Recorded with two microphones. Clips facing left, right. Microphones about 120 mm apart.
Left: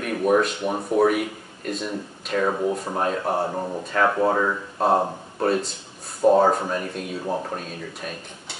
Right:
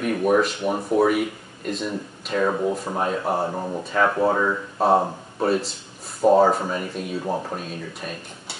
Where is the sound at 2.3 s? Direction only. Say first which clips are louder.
Right 1 dB; 5° right (ahead or behind).